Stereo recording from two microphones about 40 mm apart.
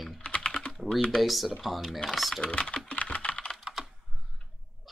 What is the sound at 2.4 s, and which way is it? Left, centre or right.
Typing, left.